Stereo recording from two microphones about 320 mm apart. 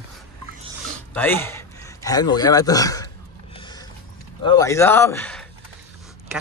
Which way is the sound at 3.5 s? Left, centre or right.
Centre.